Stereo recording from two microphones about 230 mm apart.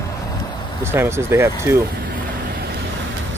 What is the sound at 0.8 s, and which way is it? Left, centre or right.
Speech, centre.